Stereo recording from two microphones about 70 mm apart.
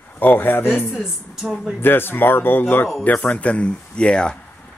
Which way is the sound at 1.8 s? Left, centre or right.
Left.